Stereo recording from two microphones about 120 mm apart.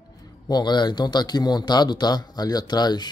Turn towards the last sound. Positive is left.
turn(degrees=35)  # may be behind; listen again after turning